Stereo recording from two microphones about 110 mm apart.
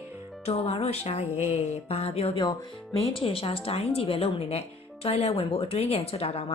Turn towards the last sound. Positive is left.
turn(degrees=65)  # may be behind; listen again after turning